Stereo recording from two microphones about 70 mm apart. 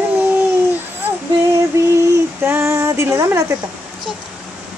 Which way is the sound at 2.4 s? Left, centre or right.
Right.